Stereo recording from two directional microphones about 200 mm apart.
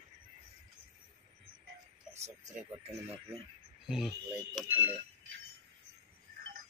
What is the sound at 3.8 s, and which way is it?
Speech, centre (ahead or behind).